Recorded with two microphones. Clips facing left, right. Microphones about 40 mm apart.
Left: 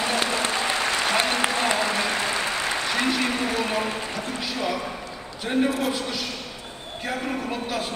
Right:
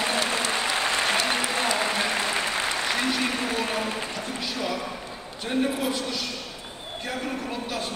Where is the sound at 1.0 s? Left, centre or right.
Left.